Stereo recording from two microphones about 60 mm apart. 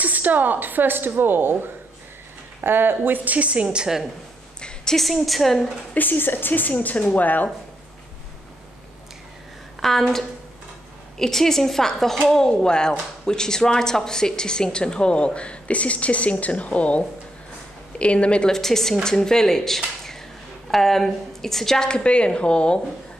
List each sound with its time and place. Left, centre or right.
0.0 s a woman's voice: right
4.6 s a sound: centre
4.9 s a woman's voice: centre
5.9 s speech: left
9.8 s a woman's voice: centre
18.5 s a woman's voice: centre